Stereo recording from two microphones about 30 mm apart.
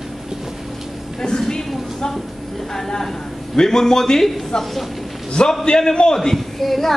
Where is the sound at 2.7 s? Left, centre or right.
Centre.